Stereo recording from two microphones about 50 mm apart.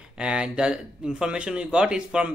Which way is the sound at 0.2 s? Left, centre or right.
Centre.